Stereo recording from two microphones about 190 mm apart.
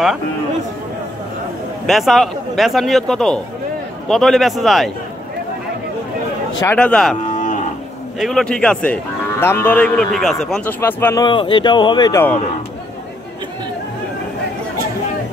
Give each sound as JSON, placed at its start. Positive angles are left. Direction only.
{"t": 1.9, "sound": "a man's voice", "side_deg": 0}
{"t": 6.6, "sound": "a man's voice", "side_deg": 10}
{"t": 7.2, "sound": "cattle", "side_deg": 40}
{"t": 8.2, "sound": "speech", "side_deg": 0}
{"t": 11.2, "sound": "speech", "side_deg": 25}